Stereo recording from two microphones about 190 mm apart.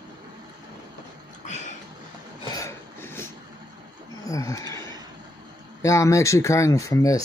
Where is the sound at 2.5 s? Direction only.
15° left (ahead or behind).